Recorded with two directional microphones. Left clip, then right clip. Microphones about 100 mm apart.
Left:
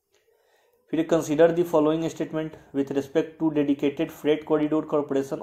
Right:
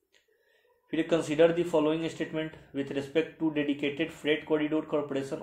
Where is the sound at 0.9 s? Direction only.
40° left (ahead or behind).